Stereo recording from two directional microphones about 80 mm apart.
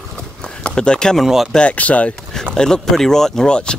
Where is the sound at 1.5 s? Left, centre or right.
Centre.